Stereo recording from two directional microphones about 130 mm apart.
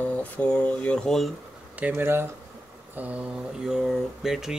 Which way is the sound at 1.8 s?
15° right (ahead or behind).